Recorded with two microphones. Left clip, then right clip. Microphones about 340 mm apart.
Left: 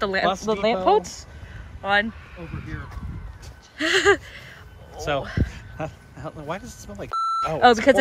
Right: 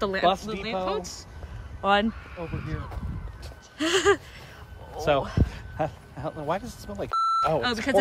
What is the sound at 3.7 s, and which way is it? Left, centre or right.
Speech, centre.